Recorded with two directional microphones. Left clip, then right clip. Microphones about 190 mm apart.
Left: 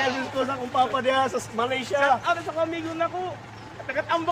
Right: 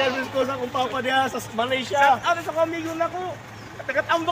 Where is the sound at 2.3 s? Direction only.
45° right (ahead or behind).